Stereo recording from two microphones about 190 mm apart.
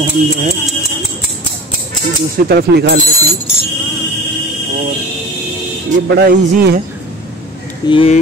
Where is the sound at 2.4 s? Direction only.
60° right (ahead or behind).